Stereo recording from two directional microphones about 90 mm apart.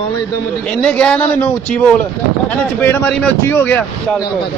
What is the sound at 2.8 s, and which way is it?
A man's voice, 25° left (ahead or behind).